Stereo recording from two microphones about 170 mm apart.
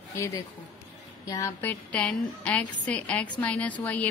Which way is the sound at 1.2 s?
20° left (ahead or behind).